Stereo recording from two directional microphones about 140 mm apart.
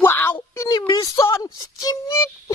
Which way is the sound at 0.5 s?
25° left (ahead or behind).